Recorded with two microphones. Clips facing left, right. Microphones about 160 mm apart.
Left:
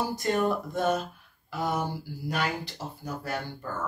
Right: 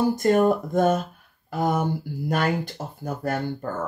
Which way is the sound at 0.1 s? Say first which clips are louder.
Right 7 dB; 50° right (ahead or behind).